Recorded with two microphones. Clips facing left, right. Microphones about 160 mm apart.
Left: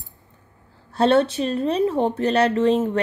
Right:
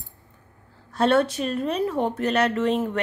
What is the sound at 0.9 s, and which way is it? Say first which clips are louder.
Speech: left 3 dB; 30° left (ahead or behind).